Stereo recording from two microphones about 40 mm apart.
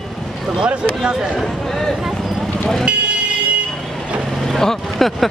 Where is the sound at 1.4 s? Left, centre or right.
Centre.